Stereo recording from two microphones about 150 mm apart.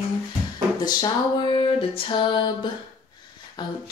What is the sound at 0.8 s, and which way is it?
Music, 30° left (ahead or behind).